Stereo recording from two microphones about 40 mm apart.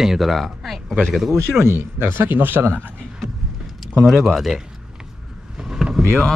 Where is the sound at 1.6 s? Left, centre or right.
Right.